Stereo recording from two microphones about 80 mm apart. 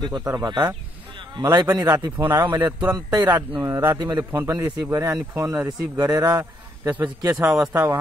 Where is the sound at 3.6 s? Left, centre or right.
Right.